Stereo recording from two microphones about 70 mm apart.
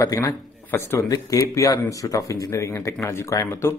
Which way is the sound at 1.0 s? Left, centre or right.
Left.